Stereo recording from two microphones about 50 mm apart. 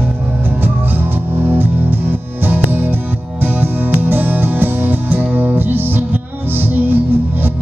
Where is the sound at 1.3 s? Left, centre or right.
Right.